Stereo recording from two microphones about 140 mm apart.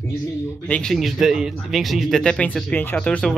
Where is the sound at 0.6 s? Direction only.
5° left (ahead or behind).